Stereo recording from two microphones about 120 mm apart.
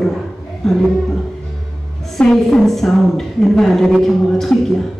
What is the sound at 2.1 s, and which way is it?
A woman's voice, 5° left (ahead or behind).